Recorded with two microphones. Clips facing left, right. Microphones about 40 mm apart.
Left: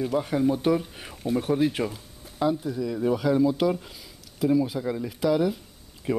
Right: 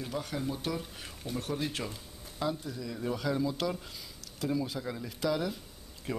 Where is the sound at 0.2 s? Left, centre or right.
Left.